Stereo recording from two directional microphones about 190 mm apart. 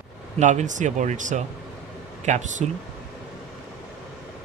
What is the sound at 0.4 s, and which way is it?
Speech, 40° right (ahead or behind).